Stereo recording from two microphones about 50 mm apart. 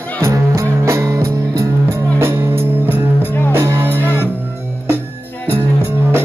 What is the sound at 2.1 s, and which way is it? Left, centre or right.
Music, right.